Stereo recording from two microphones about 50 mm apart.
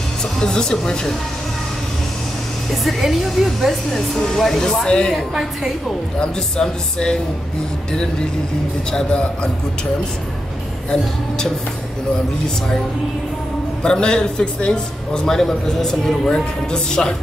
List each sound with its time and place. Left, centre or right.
0.2 s speech: centre
2.7 s speech: centre
5.3 s a woman's voice: centre
6.1 s speech: centre
8.9 s speech: centre
10.9 s speech: centre
13.8 s speech: centre
15.2 s speech: centre